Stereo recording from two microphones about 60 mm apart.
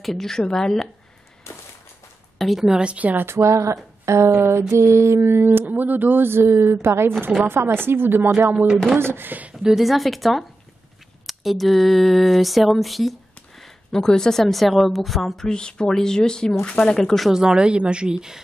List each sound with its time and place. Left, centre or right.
0.0 s speech: centre
2.3 s a woman's voice: centre
2.7 s a woman's voice: centre
3.3 s speech: right
4.3 s speech: right
9.6 s a sound: centre
13.6 s a woman's voice: centre
15.4 s speech: centre
17.3 s a woman's voice: centre